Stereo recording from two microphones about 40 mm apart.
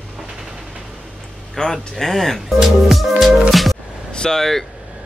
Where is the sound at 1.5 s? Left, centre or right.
Centre.